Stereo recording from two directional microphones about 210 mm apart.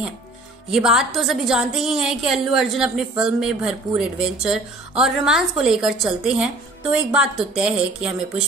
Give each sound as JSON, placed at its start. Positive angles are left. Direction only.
{"t": 0.7, "sound": "a woman's voice", "side_deg": 0}